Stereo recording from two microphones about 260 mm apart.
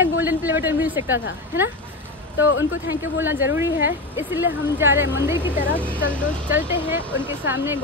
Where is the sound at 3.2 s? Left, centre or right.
Centre.